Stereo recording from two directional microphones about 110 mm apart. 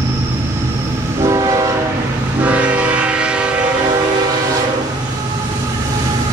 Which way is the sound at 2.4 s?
15° right (ahead or behind).